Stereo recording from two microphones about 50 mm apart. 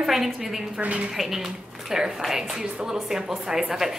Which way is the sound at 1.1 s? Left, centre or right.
Centre.